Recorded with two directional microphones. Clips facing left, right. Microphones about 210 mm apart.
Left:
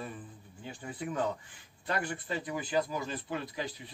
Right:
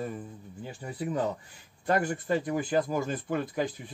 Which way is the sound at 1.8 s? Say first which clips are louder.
Right 7 dB; 45° right (ahead or behind).